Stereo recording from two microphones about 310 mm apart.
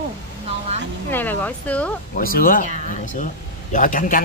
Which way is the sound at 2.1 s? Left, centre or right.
Left.